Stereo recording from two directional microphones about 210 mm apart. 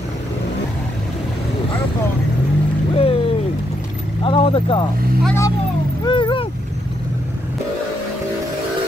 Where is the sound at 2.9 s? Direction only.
25° left (ahead or behind).